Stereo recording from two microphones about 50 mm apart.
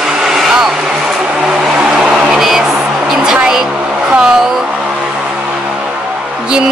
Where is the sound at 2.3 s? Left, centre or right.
Centre.